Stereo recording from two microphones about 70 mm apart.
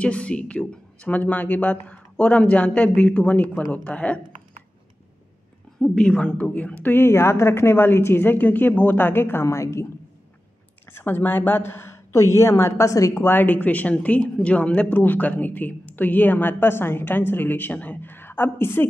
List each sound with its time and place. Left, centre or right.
0.0 s speech: centre
5.8 s speech: centre; by 9.8 s left
10.9 s a woman's voice: left
13.2 s speech: left